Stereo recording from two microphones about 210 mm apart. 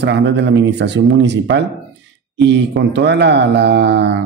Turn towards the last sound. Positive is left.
turn(degrees=-55)  # may be behind; listen again after turning